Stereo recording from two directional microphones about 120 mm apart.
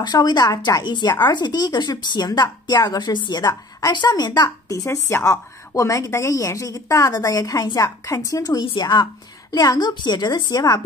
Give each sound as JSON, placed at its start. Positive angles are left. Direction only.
{"t": 0.0, "sound": "speech", "side_deg": 35}